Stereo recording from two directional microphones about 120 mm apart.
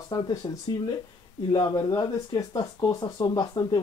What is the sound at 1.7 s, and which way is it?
Speech, 30° left (ahead or behind).